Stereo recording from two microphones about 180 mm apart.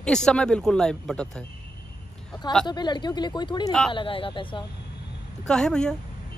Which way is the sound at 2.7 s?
25° left (ahead or behind).